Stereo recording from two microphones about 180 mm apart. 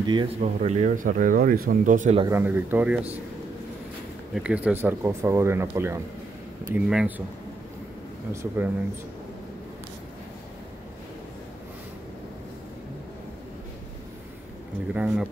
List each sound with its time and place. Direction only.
0.0 s speech: 25° right (ahead or behind)
0.4 s speech: 40° right (ahead or behind)
2.2 s speech: 10° right (ahead or behind)
4.3 s speech: 5° right (ahead or behind)
8.3 s speech: 15° right (ahead or behind)
15.0 s speech: 5° right (ahead or behind)